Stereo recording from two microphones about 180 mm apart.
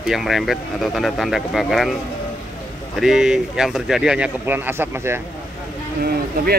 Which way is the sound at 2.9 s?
5° right (ahead or behind).